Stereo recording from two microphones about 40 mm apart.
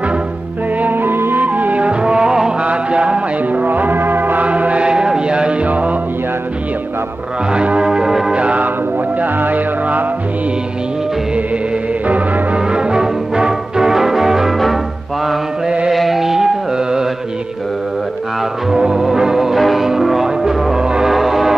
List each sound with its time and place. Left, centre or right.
0.7 s music: right
1.4 s music: right; by 2.5 s centre
2.6 s music: right
3.6 s music: right
4.5 s music: right
5.7 s music: right
7.5 s music: right
8.3 s music: right
9.2 s music: right
12.5 s music: right
15.9 s music: centre
18.7 s music: centre
21.1 s music: centre